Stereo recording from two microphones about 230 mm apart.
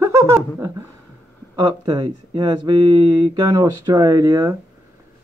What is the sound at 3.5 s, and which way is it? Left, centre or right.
Speech, centre.